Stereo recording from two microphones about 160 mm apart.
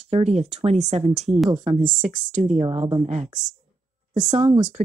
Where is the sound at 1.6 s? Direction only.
55° right (ahead or behind).